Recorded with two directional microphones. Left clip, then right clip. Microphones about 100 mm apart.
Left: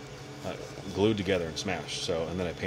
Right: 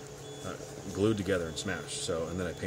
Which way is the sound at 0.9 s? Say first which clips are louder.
Left 3 dB; 20° right (ahead or behind).